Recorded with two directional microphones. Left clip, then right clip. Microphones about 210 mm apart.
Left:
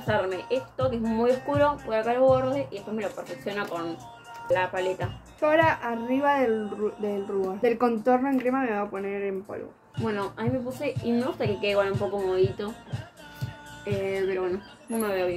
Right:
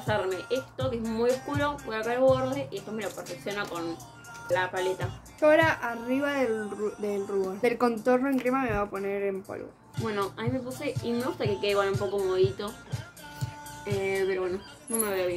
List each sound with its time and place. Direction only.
0.0 s speech: 5° left (ahead or behind)
5.4 s speech: 20° right (ahead or behind)
10.0 s speech: centre (ahead or behind)
13.8 s speech: 5° left (ahead or behind)